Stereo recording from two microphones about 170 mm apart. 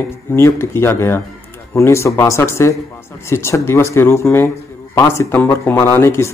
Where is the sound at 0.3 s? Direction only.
15° left (ahead or behind).